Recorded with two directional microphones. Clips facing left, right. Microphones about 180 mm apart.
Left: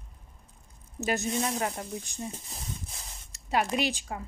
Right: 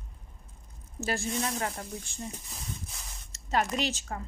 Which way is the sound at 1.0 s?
20° left (ahead or behind).